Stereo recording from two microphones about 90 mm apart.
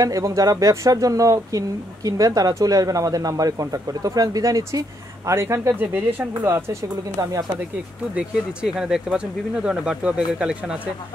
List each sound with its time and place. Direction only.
0.0 s speech: 40° right (ahead or behind)
8.1 s speech: 10° right (ahead or behind)